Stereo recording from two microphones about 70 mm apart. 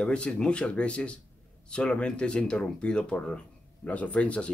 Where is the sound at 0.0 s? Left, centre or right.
Centre.